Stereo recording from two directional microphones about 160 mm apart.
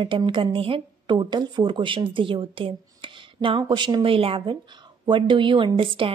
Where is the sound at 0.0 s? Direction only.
30° right (ahead or behind).